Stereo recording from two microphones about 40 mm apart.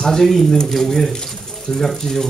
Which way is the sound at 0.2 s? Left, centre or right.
Centre.